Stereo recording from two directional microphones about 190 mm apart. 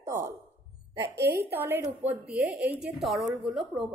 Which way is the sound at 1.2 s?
10° right (ahead or behind).